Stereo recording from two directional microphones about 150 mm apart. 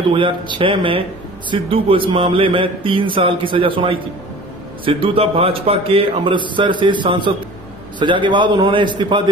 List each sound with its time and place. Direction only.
0.1 s a man's voice: 35° right (ahead or behind)